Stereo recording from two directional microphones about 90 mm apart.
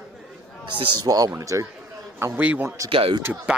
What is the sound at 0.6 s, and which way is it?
Speech, 65° right (ahead or behind).